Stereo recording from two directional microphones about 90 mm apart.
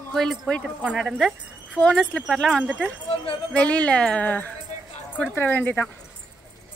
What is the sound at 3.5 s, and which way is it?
Speech, 15° left (ahead or behind).